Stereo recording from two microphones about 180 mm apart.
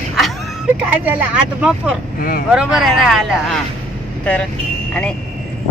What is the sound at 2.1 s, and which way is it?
Speech, 55° left (ahead or behind).